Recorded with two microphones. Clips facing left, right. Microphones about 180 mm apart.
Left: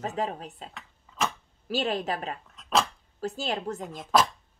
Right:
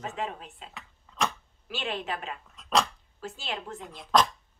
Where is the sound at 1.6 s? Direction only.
40° left (ahead or behind).